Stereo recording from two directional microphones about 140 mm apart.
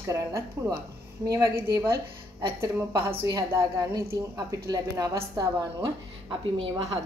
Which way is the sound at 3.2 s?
25° right (ahead or behind).